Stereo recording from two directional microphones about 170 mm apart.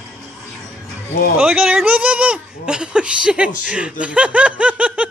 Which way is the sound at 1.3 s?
5° right (ahead or behind).